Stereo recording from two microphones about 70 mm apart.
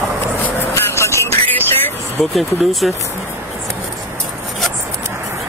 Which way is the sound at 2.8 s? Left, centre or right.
Centre.